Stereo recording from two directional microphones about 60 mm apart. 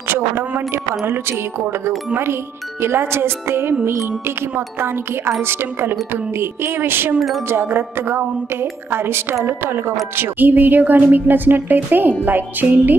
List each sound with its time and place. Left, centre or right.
0.1 s speech: right
7.2 s speech: centre
7.4 s speech: right